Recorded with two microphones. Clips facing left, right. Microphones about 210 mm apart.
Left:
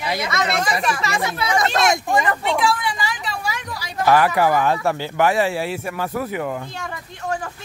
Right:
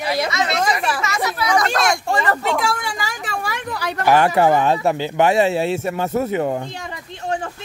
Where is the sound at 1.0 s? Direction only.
30° left (ahead or behind).